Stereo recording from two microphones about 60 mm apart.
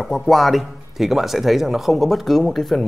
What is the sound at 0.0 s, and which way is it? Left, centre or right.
Speech, centre.